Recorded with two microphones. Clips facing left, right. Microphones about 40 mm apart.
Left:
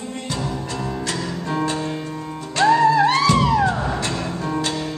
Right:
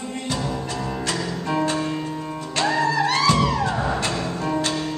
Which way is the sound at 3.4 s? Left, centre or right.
Centre.